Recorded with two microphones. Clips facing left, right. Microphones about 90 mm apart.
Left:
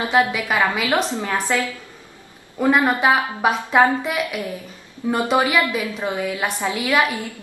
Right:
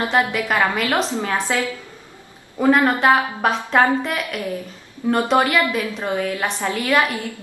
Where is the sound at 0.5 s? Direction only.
10° left (ahead or behind).